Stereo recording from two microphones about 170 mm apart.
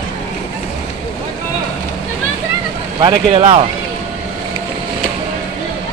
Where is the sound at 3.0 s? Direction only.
25° right (ahead or behind).